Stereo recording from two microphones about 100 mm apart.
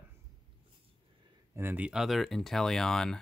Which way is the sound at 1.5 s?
20° right (ahead or behind).